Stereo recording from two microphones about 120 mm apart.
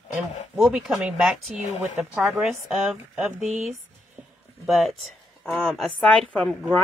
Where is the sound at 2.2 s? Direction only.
5° right (ahead or behind).